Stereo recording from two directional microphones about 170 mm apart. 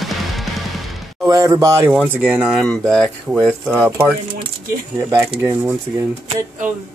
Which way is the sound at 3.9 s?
10° right (ahead or behind).